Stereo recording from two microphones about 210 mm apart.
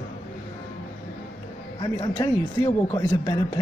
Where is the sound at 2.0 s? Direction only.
20° left (ahead or behind).